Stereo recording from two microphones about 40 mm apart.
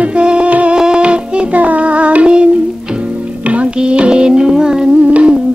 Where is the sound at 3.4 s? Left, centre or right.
Right; by 4.9 s centre.